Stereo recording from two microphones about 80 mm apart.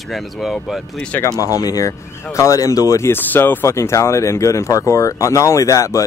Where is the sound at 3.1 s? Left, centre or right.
Left.